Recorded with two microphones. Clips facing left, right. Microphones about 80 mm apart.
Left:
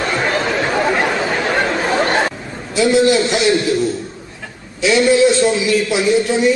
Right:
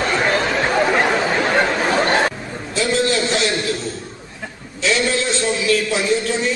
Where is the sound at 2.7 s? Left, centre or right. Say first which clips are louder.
Left 6 dB; centre.